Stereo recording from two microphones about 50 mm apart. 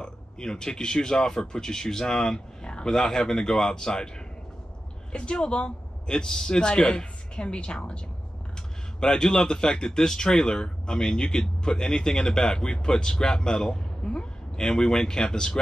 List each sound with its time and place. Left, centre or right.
0.0 s speech: centre
5.1 s speech: left
9.0 s speech: centre